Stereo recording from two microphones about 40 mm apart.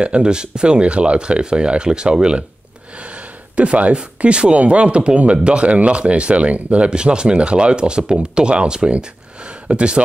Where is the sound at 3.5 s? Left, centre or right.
Right.